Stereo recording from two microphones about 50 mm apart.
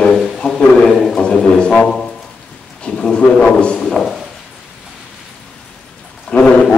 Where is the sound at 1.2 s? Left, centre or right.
Centre.